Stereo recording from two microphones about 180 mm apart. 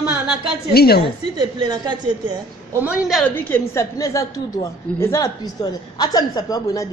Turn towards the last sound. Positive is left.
turn(degrees=20)  # may be behind; listen again after turning